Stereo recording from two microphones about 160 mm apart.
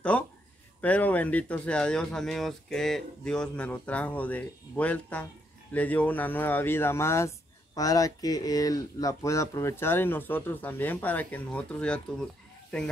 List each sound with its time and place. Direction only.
0.1 s speech: 10° left (ahead or behind)